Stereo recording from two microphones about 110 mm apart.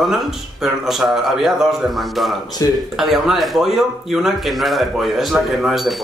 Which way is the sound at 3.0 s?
Centre (ahead or behind).